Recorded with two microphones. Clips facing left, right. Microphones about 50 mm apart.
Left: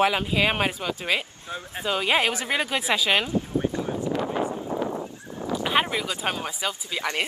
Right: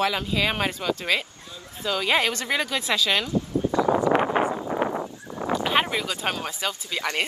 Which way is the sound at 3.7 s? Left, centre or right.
Right.